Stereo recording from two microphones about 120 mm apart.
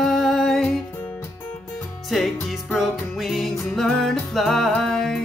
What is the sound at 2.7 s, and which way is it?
Music, centre (ahead or behind).